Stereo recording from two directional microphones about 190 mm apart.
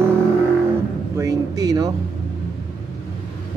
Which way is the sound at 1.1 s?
15° right (ahead or behind).